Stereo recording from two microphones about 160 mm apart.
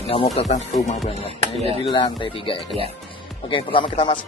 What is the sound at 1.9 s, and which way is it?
Speech, 30° left (ahead or behind).